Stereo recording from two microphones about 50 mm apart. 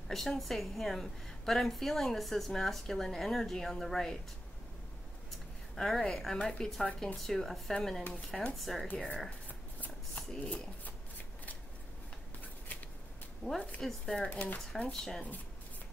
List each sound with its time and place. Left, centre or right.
0.1 s a woman's voice: centre
5.8 s a woman's voice: centre
9.5 s shuffling cards: left
13.4 s speech: left
13.7 s a woman's voice: centre
14.3 s speech: left
14.9 s a woman's voice: centre